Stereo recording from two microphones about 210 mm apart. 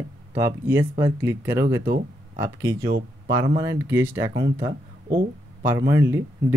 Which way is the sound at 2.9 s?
50° right (ahead or behind).